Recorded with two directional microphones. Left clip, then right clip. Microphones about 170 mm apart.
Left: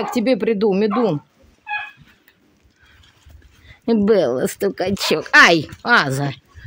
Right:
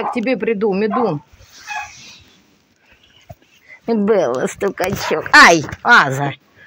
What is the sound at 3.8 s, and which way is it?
Speech, 45° left (ahead or behind).